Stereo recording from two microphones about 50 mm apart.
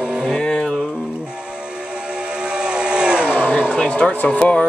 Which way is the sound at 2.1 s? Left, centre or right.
Right.